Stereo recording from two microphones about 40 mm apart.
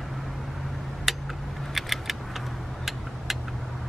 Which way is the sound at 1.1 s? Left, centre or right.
Centre.